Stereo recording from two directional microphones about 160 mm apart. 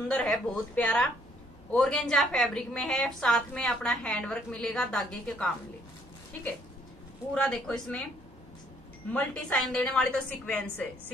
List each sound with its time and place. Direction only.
0.1 s a woman's voice: 5° left (ahead or behind)
7.3 s a woman's voice: 5° left (ahead or behind)
9.1 s a woman's voice: 5° left (ahead or behind)